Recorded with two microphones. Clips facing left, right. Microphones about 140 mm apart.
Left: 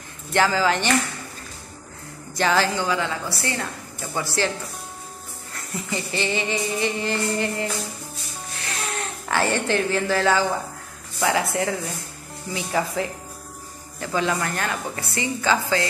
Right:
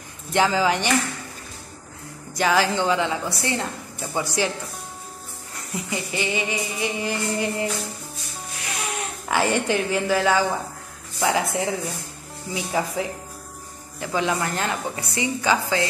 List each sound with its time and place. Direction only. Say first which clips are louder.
0.3 s a woman's voice: even; 15° right (ahead or behind)
2.3 s a woman's voice: right 1 dB; 10° right (ahead or behind)
5.7 s a woman's voice: even; 15° right (ahead or behind)
8.6 s a woman's voice: even; 10° right (ahead or behind)